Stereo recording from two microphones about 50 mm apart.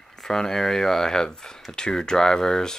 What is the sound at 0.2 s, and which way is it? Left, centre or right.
Speech, centre.